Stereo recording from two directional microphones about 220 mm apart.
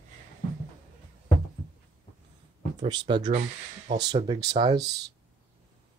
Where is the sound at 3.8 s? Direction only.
50° right (ahead or behind).